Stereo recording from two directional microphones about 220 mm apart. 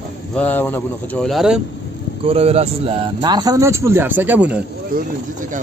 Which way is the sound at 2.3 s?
25° right (ahead or behind).